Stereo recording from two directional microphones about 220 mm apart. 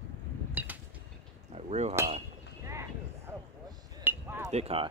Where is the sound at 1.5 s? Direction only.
30° right (ahead or behind).